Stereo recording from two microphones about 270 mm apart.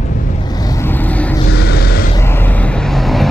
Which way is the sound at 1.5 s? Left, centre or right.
Left.